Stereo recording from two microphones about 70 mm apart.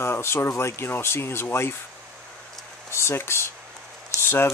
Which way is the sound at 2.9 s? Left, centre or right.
Left.